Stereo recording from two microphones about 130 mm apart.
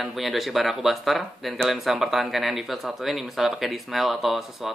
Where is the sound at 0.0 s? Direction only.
Centre (ahead or behind).